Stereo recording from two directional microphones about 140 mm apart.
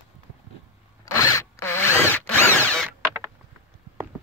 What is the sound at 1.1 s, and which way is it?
Drill, 20° left (ahead or behind).